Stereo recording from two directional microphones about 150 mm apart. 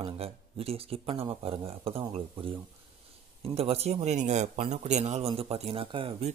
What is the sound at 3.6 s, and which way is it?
Speech, 40° right (ahead or behind).